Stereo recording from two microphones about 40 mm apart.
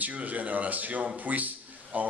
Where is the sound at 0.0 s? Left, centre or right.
Right.